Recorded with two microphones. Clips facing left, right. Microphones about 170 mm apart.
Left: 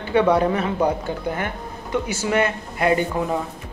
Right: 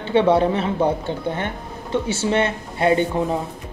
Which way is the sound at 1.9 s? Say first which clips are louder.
Right 1 dB; 25° right (ahead or behind).